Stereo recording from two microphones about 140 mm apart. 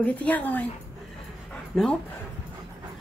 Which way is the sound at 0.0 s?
10° left (ahead or behind).